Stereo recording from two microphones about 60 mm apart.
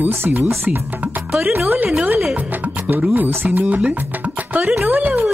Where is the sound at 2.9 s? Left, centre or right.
Right.